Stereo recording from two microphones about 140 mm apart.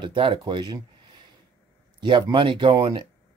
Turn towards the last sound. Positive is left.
turn(degrees=-35)  # may be behind; listen again after turning